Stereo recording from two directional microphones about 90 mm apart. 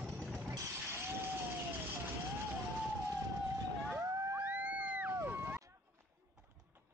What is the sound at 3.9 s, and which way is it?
Vehicle, 30° right (ahead or behind).